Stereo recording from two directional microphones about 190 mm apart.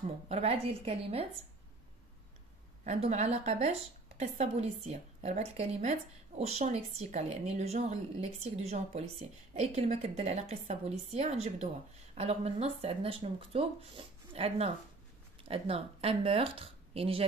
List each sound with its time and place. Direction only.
0.3 s a woman's voice: 35° right (ahead or behind)
2.8 s a woman's voice: 35° right (ahead or behind)